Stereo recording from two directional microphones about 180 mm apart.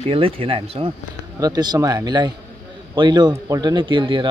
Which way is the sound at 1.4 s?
20° right (ahead or behind).